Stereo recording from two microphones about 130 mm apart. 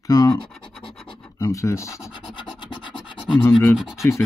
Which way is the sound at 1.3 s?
25° left (ahead or behind).